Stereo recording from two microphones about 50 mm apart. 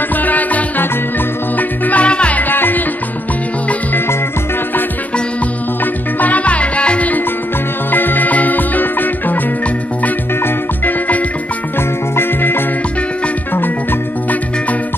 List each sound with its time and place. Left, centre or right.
0.2 s music: left
2.5 s music: left
6.1 s music: left
7.9 s music: left
12.2 s music: left